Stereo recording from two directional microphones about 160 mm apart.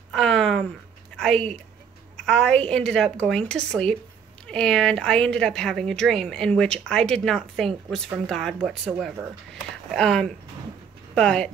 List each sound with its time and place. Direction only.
0.1 s a sound: 5° left (ahead or behind)
2.1 s a woman's voice: 5° left (ahead or behind)
9.8 s a woman's voice: 5° left (ahead or behind)